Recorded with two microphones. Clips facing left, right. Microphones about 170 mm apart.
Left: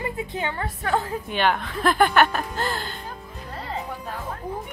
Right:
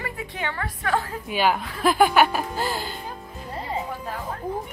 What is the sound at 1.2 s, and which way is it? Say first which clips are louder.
Speech: right 3 dB; 5° right (ahead or behind).